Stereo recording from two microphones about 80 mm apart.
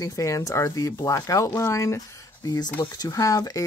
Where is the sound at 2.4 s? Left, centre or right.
Left.